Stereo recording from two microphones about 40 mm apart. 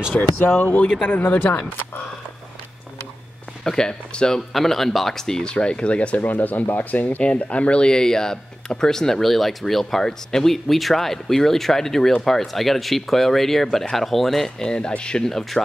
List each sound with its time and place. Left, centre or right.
0.1 s speech: left
0.6 s speech: left
3.6 s speech: centre
4.6 s speech: centre
5.4 s speech: left
6.2 s speech: left
7.2 s speech: left; by 14.5 s centre
14.6 s speech: left
15.2 s speech: centre